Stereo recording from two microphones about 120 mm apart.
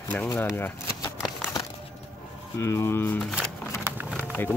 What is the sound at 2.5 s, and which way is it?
Speech, 20° left (ahead or behind).